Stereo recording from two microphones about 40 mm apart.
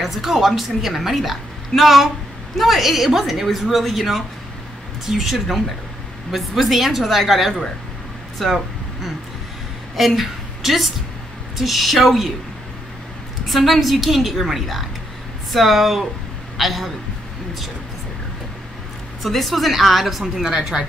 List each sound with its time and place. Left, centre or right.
0.0 s a woman's voice: centre
13.5 s a woman's voice: centre
19.2 s a woman's voice: centre